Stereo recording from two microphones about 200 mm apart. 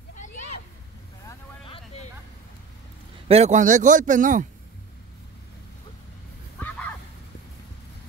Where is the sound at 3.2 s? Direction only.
30° right (ahead or behind).